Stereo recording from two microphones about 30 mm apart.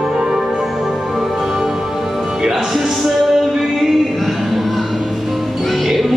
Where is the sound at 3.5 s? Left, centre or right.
Centre.